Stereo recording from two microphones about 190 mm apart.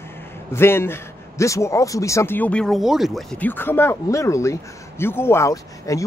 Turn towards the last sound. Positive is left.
turn(degrees=15)  # may be behind; listen again after turning